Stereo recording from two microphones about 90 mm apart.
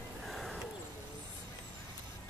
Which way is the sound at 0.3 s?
Centre (ahead or behind).